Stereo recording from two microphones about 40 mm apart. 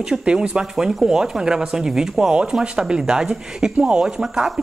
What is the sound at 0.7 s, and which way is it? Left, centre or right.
Speech, centre.